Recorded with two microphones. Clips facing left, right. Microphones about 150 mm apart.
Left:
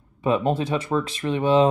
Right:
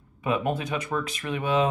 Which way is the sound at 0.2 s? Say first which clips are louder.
Left 5 dB; 30° left (ahead or behind).